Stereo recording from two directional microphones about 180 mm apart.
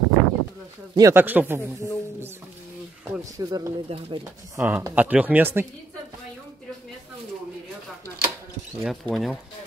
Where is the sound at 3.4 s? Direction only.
20° right (ahead or behind).